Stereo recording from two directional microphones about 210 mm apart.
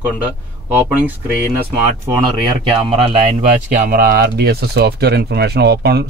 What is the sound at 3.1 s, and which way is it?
Speech, 35° right (ahead or behind).